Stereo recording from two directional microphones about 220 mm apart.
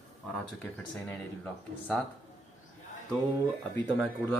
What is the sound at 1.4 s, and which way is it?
Speech, 5° left (ahead or behind).